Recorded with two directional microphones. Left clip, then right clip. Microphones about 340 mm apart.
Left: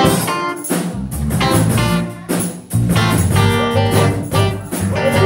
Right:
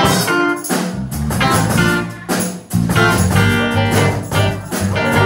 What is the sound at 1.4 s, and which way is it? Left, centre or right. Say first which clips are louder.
Music: right 2 dB; centre.